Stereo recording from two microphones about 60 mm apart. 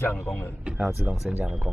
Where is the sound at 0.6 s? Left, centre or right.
Centre.